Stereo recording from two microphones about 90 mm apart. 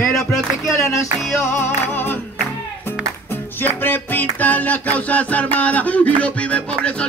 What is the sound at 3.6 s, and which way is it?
Music, 20° left (ahead or behind).